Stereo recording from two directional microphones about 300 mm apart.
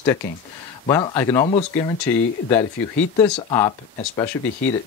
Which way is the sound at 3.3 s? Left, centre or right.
Centre.